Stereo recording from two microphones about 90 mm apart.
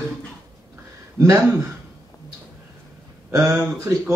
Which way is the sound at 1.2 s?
30° right (ahead or behind).